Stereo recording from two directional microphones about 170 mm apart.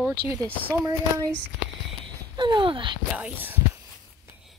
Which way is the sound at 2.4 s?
25° right (ahead or behind).